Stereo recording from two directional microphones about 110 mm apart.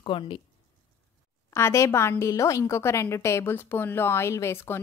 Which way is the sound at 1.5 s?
25° left (ahead or behind).